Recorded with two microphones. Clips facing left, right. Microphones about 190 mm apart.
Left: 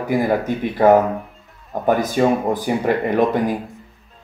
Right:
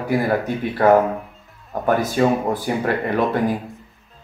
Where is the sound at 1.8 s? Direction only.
15° left (ahead or behind).